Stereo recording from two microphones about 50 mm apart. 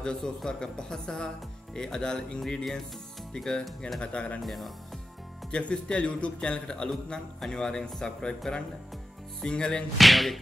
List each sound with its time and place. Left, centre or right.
0.0 s a man's voice: centre
4.0 s speech: left
4.4 s music: centre
5.5 s speech: left
6.9 s a man's voice: centre
9.4 s a man's voice: centre
9.9 s music: centre